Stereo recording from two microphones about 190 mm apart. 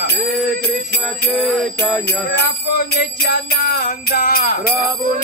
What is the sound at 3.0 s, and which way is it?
Music, 55° left (ahead or behind).